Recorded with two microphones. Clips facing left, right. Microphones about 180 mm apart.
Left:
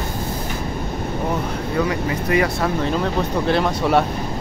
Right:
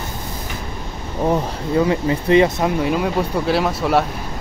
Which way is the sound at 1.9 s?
25° right (ahead or behind).